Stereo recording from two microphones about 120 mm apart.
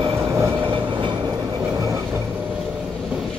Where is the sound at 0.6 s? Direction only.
45° right (ahead or behind).